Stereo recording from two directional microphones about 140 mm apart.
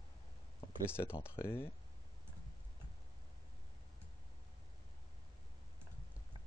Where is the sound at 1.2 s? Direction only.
15° left (ahead or behind).